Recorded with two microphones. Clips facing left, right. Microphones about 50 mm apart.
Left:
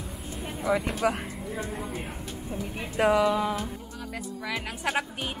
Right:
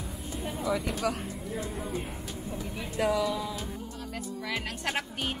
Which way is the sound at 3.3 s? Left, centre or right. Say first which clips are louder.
Left 7 dB; left.